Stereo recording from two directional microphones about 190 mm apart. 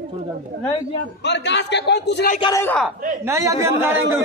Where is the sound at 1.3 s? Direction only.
65° left (ahead or behind).